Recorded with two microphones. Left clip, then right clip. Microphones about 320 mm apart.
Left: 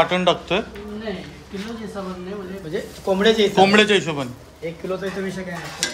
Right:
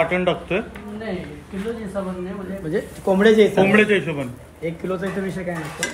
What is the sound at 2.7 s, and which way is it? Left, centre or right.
Speech, right.